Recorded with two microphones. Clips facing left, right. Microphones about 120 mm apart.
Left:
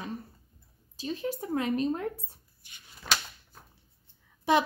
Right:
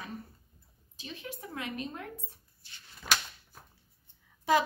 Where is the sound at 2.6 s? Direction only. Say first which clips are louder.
Even; 15° left (ahead or behind).